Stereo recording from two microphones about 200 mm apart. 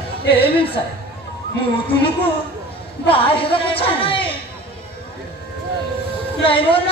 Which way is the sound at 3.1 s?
25° left (ahead or behind).